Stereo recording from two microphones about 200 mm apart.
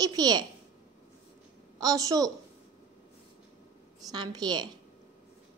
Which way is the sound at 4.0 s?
20° right (ahead or behind).